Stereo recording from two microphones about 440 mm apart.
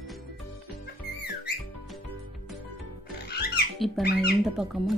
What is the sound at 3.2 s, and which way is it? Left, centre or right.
Music, left.